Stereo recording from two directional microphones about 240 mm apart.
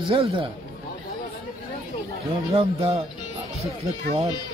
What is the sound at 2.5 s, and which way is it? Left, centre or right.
Speech, right.